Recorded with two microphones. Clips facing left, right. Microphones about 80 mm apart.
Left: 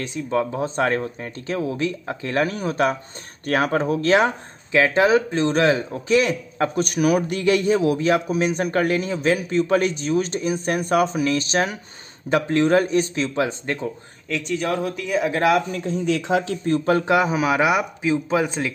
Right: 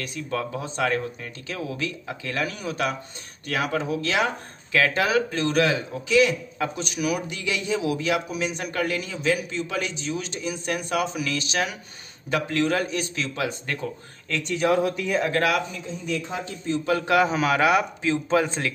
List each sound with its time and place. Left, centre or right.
0.0 s a man's voice: left
4.7 s a man's voice: left
14.3 s speech: centre
15.3 s speech: left
15.7 s speech: left
16.8 s a man's voice: left
17.1 s speech: centre